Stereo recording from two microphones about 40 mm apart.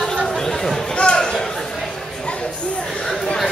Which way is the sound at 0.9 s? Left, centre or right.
Left.